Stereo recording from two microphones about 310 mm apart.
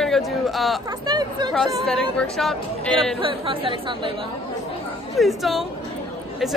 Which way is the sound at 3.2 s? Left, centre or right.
Centre.